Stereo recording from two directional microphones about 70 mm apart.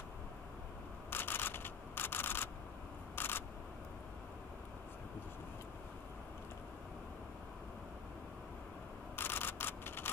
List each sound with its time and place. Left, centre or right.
1.1 s camera: left
3.2 s single-lens reflex camera: left
9.1 s camera: left